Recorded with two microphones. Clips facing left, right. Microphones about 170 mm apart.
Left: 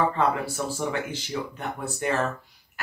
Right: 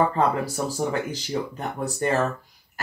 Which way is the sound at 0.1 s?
40° right (ahead or behind).